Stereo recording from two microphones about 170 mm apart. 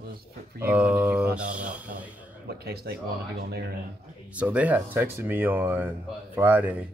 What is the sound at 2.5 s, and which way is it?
Speech, 65° right (ahead or behind).